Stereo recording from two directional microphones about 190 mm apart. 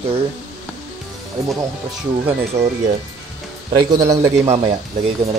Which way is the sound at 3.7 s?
20° right (ahead or behind).